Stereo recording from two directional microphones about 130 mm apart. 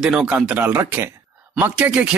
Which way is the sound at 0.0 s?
5° right (ahead or behind).